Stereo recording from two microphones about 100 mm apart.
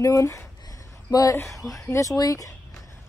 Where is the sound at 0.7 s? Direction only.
40° left (ahead or behind).